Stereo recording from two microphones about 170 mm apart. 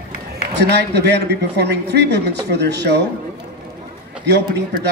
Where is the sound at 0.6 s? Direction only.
75° right (ahead or behind).